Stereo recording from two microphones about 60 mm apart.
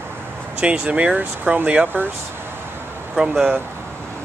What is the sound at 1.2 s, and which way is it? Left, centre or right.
Speech, right.